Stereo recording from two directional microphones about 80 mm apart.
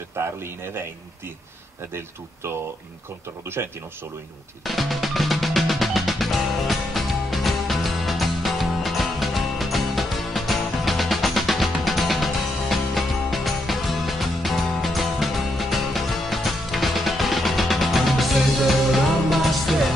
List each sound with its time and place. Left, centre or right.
0.1 s a man's voice: right
3.6 s speech: right
4.6 s music: centre